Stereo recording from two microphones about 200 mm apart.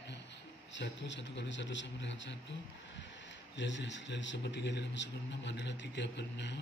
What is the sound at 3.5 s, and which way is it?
A man's voice, 65° left (ahead or behind).